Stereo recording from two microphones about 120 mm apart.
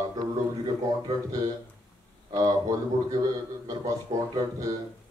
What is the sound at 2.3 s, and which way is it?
Speech, 30° right (ahead or behind).